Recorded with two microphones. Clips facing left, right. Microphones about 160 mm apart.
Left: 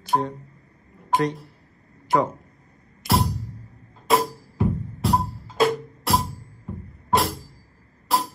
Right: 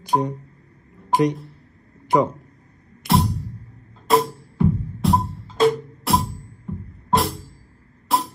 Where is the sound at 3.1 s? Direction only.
Centre (ahead or behind).